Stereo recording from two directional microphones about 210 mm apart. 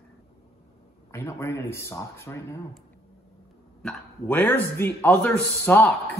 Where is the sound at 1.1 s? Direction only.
15° left (ahead or behind).